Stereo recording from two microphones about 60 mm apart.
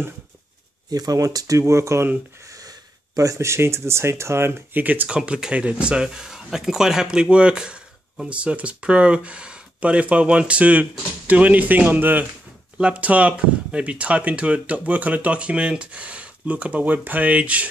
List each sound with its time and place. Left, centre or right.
0.8 s speech: right
2.4 s a sound: right
3.3 s speech: right
5.1 s speech: centre